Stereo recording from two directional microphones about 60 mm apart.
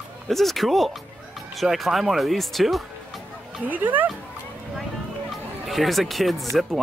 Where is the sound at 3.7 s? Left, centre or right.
Right.